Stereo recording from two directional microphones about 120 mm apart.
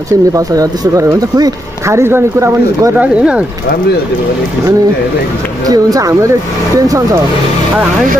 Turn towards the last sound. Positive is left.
turn(degrees=-25)  # may be behind; listen again after turning